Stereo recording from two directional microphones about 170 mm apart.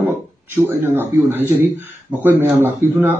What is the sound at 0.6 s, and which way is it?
Speech, 10° right (ahead or behind).